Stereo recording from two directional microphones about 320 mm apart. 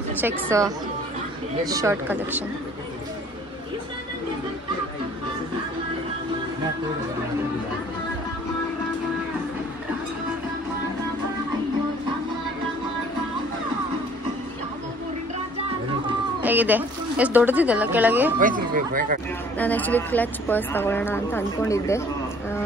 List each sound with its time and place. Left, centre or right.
0.5 s speech: centre
16.4 s a woman's voice: centre
18.4 s speech: right
19.6 s a woman's voice: centre